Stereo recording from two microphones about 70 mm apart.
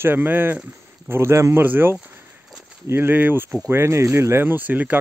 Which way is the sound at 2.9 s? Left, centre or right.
Right.